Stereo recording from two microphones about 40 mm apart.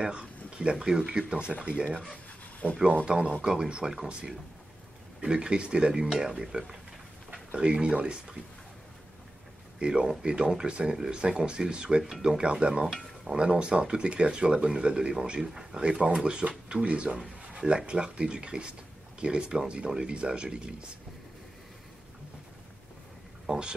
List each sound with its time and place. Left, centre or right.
0.0 s speech: right
3.1 s speech: right
9.8 s speech: right
12.8 s stir: centre
13.4 s speech: right
23.4 s speech: centre